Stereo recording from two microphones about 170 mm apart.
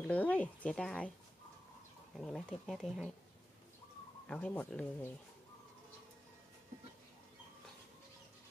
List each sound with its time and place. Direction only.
0.0 s speech: 10° left (ahead or behind)
2.1 s speech: centre (ahead or behind)
4.3 s speech: 5° left (ahead or behind)